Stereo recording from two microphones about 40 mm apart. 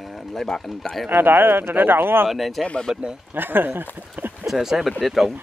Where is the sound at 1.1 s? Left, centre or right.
Right.